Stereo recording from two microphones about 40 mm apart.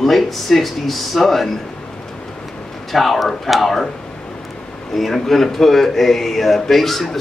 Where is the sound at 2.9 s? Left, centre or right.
Centre.